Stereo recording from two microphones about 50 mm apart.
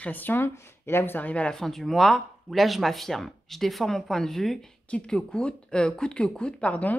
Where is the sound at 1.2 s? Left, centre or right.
Left.